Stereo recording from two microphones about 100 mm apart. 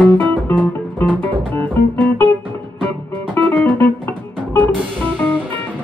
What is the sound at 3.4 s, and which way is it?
Music, 15° left (ahead or behind).